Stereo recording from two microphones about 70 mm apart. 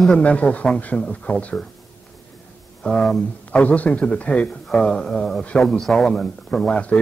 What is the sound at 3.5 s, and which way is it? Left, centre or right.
Speech, left.